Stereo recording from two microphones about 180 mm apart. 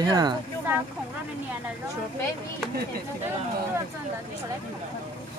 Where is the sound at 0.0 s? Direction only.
20° right (ahead or behind).